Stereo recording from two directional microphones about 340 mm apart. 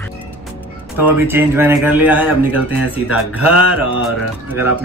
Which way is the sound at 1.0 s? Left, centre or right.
Centre.